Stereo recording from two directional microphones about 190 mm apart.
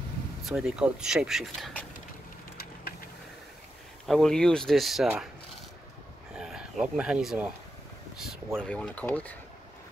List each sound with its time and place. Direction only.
0.5 s speech: 5° right (ahead or behind)
2.5 s vehicle: 55° left (ahead or behind)
4.0 s speech: centre (ahead or behind)
6.3 s speech: 5° right (ahead or behind)
8.5 s speech: 5° left (ahead or behind)